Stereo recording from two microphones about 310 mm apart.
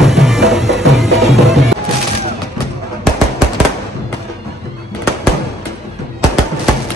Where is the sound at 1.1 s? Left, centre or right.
Right.